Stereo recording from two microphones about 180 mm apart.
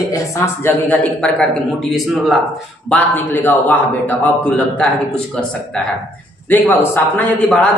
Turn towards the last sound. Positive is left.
turn(degrees=5)  # may be behind; listen again after turning